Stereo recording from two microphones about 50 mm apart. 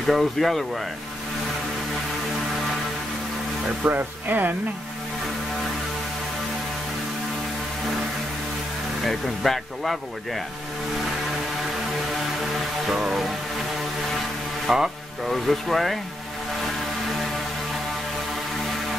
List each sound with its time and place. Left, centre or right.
0.0 s speech: centre
3.8 s speech: right
9.0 s speech: centre
12.8 s music: centre
14.7 s speech: centre